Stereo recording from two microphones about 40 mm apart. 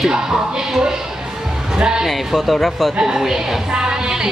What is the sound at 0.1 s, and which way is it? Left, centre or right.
Music, centre.